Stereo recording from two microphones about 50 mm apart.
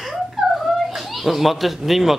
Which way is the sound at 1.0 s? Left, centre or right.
Centre.